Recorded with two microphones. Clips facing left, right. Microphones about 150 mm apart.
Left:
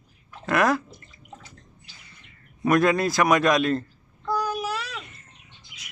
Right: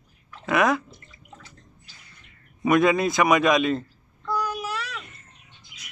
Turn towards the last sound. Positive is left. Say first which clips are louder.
# left 1 dB
turn(degrees=-45)  # may be behind; listen again after turning